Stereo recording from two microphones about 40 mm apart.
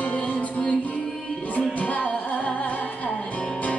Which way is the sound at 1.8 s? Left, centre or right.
Left.